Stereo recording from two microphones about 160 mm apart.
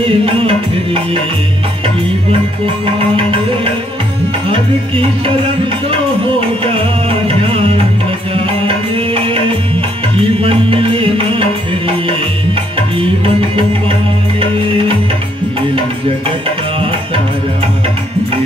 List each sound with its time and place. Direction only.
0.0 s music: 35° right (ahead or behind)
4.5 s music: 35° right (ahead or behind)
6.6 s music: 35° right (ahead or behind)
10.4 s music: 35° right (ahead or behind)
12.7 s music: 35° right (ahead or behind)